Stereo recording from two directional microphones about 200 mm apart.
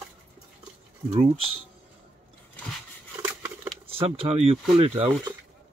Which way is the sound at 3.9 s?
30° right (ahead or behind).